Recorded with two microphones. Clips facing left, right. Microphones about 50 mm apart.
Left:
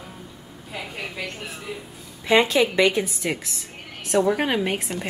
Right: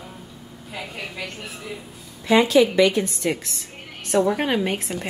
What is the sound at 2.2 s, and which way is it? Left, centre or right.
Speech, left.